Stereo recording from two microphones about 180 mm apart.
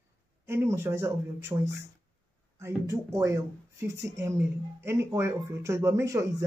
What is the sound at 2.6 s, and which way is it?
Speech, 15° right (ahead or behind).